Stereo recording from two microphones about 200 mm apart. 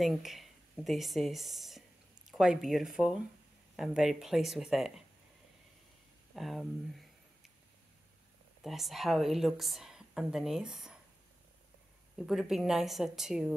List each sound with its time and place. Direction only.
0.0 s a woman's voice: centre (ahead or behind)
6.3 s a sound: centre (ahead or behind)
8.6 s a woman's voice: centre (ahead or behind)
12.2 s a woman's voice: centre (ahead or behind)